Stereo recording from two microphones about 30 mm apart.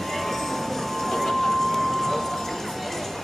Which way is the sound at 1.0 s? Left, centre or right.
Centre.